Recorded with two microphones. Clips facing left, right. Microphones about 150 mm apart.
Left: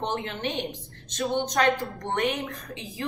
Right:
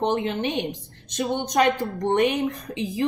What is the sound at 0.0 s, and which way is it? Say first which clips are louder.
A woman's voice: right 6 dB; 15° right (ahead or behind).